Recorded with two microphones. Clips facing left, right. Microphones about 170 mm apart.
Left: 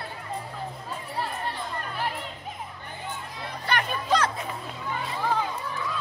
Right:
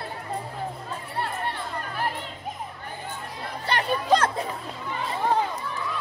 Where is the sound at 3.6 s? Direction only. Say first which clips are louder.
Right 4 dB; 30° right (ahead or behind).